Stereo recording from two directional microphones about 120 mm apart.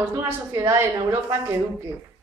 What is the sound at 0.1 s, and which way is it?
A woman's voice, 20° right (ahead or behind).